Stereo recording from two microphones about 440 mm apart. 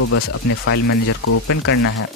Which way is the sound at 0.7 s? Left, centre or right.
Left.